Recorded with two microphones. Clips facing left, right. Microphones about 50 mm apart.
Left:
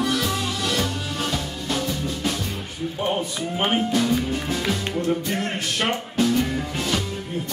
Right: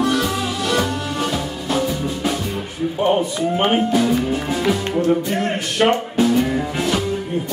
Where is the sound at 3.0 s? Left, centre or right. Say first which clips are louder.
Right 8 dB; centre.